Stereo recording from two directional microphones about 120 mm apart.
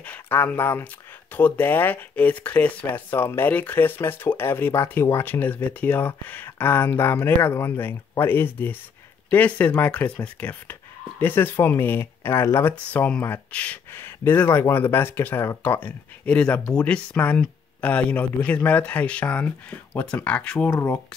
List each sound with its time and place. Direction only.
0.0 s speech: 15° left (ahead or behind)
20.7 s speech: 20° left (ahead or behind)